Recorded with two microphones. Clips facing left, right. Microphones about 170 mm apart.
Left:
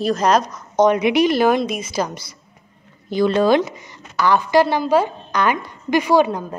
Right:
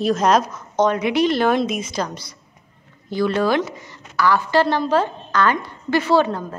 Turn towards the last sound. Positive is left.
turn(degrees=15)  # may be behind; listen again after turning